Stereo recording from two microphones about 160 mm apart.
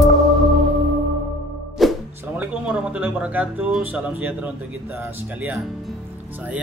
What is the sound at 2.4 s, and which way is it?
Speech, 5° right (ahead or behind).